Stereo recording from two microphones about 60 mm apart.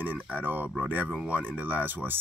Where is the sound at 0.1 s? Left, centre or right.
Right.